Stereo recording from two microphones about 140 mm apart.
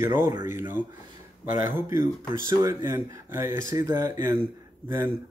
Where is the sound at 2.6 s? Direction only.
25° right (ahead or behind).